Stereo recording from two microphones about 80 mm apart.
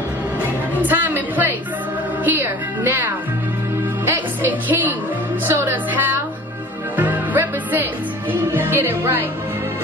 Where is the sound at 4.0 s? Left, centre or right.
Right.